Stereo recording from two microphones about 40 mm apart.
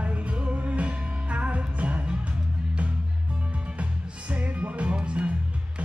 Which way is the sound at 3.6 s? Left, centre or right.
Right.